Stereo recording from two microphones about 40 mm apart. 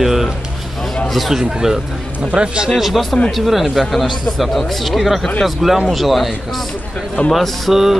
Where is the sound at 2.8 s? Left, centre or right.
Centre.